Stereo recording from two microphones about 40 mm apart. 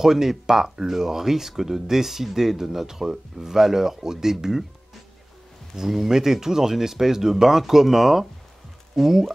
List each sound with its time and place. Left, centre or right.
0.0 s speech: centre
5.8 s speech: centre